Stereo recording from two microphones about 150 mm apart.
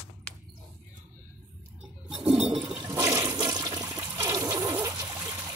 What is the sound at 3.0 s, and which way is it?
Toilet flush, 20° right (ahead or behind).